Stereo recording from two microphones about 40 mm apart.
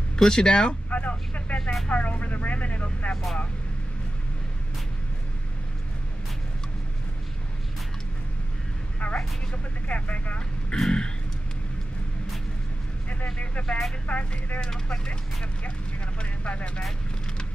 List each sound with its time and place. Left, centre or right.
0.2 s speech: centre
0.8 s vehicle: left
1.6 s speech: centre
1.9 s speech: left
9.0 s vehicle: left
9.8 s speech: left
10.7 s speech: left
13.1 s speech: left
13.7 s speech: centre
14.0 s speech: left
16.2 s speech: left